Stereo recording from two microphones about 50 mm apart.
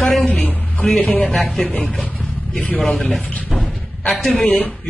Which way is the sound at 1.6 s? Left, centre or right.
Left.